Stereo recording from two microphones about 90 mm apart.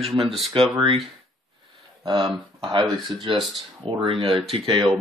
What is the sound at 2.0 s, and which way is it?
Speech, 55° right (ahead or behind).